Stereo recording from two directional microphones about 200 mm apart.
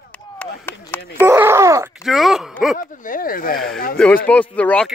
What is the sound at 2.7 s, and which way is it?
Speech, 40° left (ahead or behind).